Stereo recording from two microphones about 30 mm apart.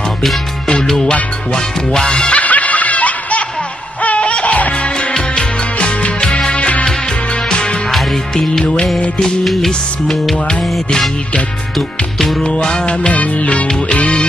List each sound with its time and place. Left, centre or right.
0.8 s music: centre
2.3 s music: left
4.2 s music: left
6.2 s music: left
6.5 s music: left
7.9 s music: centre
9.4 s music: centre
12.2 s music: centre
12.4 s music: left
13.1 s music: left